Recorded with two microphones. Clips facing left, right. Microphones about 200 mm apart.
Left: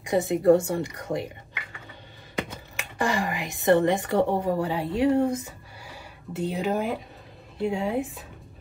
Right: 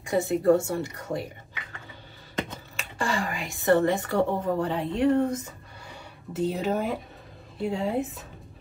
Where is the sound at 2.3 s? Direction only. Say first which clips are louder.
Even; 15° left (ahead or behind).